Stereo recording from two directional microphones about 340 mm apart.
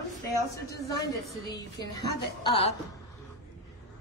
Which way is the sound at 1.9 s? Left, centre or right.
Centre.